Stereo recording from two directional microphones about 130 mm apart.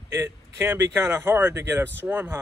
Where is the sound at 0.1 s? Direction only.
20° right (ahead or behind).